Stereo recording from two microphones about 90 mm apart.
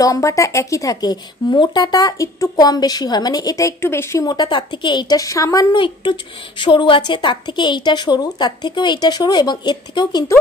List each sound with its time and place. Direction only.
0.0 s a woman's voice: 40° left (ahead or behind)
3.8 s speech: 30° left (ahead or behind)
4.3 s a woman's voice: 55° left (ahead or behind)
6.6 s a woman's voice: 65° left (ahead or behind)